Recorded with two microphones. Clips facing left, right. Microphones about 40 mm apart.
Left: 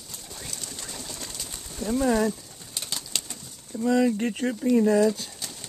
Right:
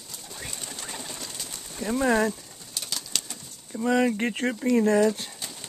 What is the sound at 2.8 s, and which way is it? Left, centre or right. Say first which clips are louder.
Pigeon: even; centre.